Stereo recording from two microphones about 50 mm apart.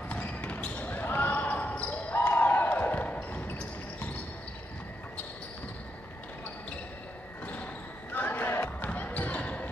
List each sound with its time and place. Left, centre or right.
0.1 s basketball bounce: left
2.1 s basketball bounce: left
8.1 s basketball bounce: left